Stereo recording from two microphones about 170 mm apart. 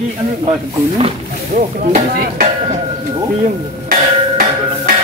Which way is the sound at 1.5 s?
50° right (ahead or behind).